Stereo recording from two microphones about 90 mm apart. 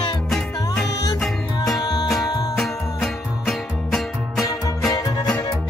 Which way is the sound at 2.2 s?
45° left (ahead or behind).